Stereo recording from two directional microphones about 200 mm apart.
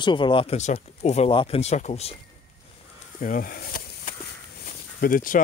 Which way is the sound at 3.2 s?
45° left (ahead or behind).